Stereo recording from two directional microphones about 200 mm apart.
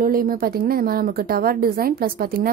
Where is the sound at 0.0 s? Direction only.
45° right (ahead or behind).